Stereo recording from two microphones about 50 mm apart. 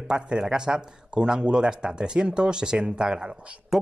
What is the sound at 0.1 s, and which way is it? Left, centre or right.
Speech, centre.